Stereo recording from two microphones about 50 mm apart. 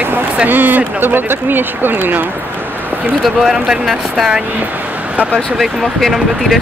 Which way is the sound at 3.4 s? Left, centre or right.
Centre.